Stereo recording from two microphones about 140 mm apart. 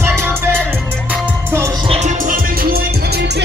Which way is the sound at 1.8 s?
45° right (ahead or behind).